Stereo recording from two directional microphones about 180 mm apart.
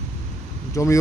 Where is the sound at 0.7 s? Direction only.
15° left (ahead or behind).